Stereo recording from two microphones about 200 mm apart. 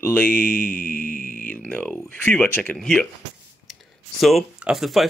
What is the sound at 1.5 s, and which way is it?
Speech, 5° left (ahead or behind).